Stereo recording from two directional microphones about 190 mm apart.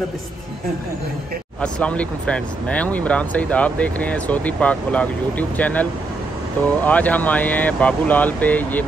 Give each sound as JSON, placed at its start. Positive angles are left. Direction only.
{"t": 1.6, "sound": "speech", "side_deg": 5}